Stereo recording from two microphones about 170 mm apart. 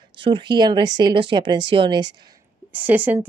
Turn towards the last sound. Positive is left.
turn(degrees=-10)  # may be behind; listen again after turning